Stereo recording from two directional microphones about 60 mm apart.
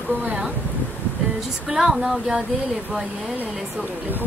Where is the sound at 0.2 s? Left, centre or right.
Right.